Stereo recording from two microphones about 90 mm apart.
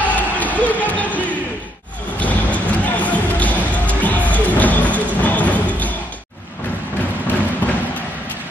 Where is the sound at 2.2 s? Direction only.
15° left (ahead or behind).